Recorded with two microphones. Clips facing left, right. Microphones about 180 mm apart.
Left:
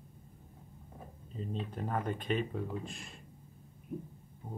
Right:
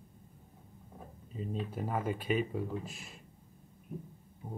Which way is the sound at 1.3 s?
5° right (ahead or behind).